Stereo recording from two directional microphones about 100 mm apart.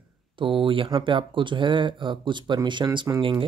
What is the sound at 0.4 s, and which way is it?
Speech, 60° right (ahead or behind).